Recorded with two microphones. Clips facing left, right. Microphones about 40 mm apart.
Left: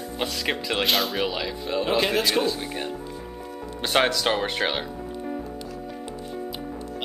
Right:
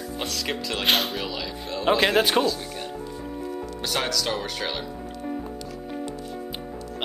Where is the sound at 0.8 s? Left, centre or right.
Right.